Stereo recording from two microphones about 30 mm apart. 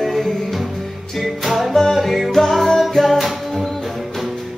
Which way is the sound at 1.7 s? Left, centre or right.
Centre.